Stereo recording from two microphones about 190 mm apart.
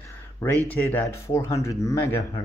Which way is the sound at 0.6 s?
10° left (ahead or behind).